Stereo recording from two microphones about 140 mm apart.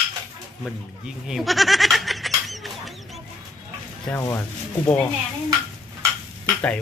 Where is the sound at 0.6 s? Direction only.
5° right (ahead or behind).